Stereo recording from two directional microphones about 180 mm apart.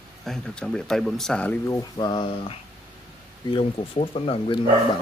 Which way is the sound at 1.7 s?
20° left (ahead or behind).